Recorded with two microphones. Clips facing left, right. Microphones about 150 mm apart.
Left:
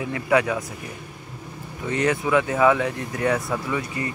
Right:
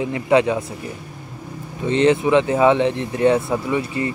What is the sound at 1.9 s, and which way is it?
Speech, 25° right (ahead or behind).